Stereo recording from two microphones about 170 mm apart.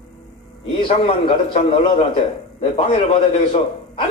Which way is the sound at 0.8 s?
35° left (ahead or behind).